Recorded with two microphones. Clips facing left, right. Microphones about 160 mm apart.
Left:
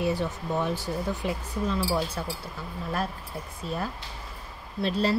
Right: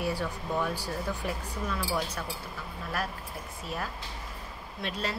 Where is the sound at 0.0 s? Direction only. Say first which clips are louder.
Left 4 dB; 20° left (ahead or behind).